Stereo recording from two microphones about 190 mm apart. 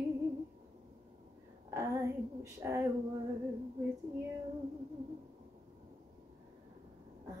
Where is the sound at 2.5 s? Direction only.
15° right (ahead or behind).